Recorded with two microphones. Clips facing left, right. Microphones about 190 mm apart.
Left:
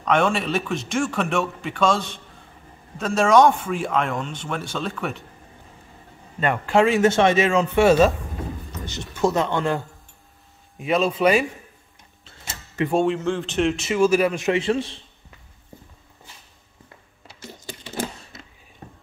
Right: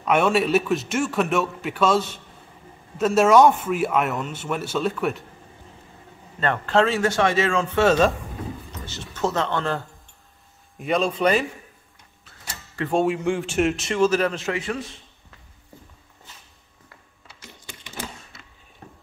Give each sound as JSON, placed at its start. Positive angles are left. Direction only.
{"t": 0.0, "sound": "speech", "side_deg": -5}
{"t": 6.4, "sound": "speech", "side_deg": 10}
{"t": 10.8, "sound": "speech", "side_deg": 5}
{"t": 12.3, "sound": "a sound", "side_deg": 25}
{"t": 12.9, "sound": "speech", "side_deg": -5}
{"t": 17.4, "sound": "typing", "side_deg": 35}